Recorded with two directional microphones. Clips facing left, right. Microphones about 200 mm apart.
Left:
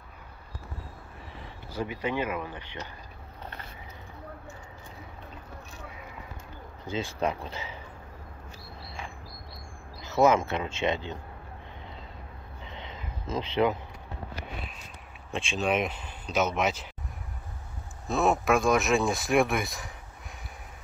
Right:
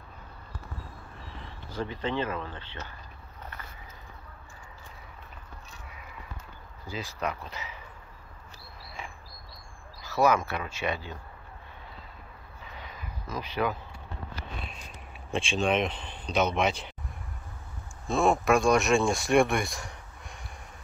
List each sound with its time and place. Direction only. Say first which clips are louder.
1.7 s speech: left 1 dB; 10° left (ahead or behind)
6.9 s speech: left 4 dB; 25° left (ahead or behind)
10.0 s speech: left 2 dB; 20° left (ahead or behind)
12.6 s a sound: left 2 dB; 25° left (ahead or behind)
15.3 s speech: right 1 dB; centre (ahead or behind)
18.0 s speech: right 1 dB; centre (ahead or behind)